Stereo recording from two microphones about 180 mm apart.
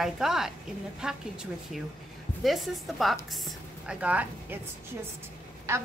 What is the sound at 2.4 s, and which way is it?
A woman's voice, centre (ahead or behind).